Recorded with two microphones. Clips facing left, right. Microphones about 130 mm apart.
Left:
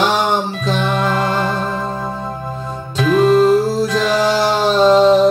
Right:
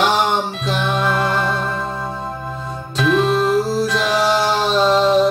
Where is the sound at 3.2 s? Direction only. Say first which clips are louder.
Left 8 dB; 40° left (ahead or behind).